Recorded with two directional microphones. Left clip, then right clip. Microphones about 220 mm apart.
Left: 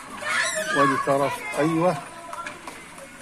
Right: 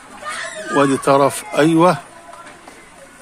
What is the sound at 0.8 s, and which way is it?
Speech, 50° right (ahead or behind).